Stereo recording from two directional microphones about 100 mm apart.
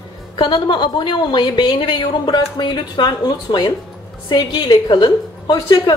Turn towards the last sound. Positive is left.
turn(degrees=45)  # may be behind; listen again after turning